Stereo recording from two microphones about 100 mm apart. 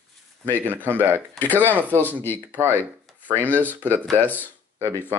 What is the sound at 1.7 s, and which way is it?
Speech, 20° right (ahead or behind).